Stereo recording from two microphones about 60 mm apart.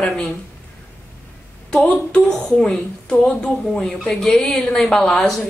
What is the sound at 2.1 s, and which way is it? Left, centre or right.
A woman's voice, centre.